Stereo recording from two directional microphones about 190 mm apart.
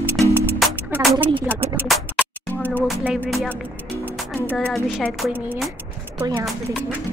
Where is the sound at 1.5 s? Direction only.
10° right (ahead or behind).